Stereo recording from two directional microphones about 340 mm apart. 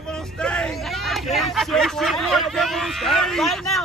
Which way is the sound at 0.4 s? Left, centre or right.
Centre.